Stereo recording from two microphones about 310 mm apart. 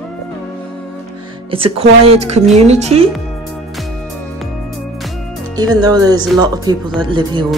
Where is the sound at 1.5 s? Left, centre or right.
Centre.